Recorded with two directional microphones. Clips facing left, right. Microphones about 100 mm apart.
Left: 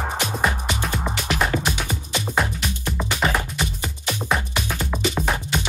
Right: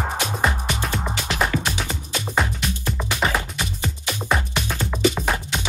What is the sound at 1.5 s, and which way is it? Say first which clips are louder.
Music: left 1 dB; 45° left (ahead or behind).